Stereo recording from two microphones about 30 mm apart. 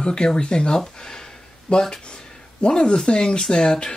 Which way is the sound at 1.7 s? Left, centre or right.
Left.